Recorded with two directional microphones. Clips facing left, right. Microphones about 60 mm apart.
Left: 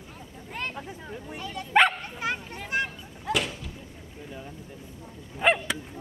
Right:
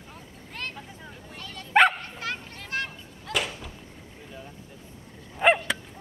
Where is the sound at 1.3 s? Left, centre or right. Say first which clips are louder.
Left 6 dB; centre.